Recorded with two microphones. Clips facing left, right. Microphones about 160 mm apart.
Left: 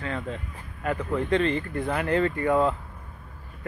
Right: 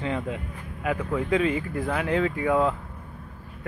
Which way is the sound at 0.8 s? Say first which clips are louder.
Even; 5° right (ahead or behind).